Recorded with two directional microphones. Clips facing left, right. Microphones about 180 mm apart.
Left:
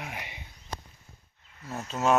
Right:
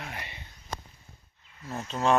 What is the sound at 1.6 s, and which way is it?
Speech, centre (ahead or behind).